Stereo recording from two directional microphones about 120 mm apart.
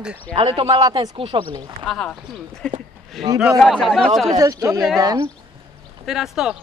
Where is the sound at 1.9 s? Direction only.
5° left (ahead or behind).